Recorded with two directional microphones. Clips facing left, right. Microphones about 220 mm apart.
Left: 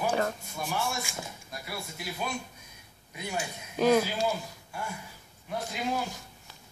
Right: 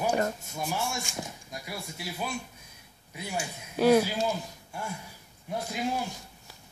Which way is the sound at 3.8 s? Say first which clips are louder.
Right 2 dB; 10° right (ahead or behind).